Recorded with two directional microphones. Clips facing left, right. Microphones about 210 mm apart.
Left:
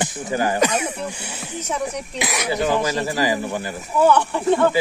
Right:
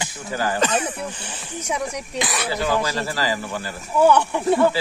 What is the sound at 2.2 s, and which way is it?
Speech, 15° left (ahead or behind).